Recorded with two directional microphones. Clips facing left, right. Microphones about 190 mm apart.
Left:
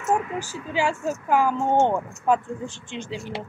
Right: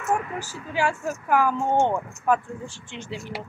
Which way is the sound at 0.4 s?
15° left (ahead or behind).